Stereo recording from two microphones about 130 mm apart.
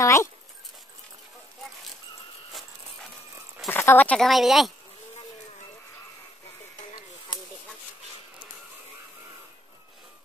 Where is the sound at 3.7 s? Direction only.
15° left (ahead or behind); by 4.7 s centre (ahead or behind).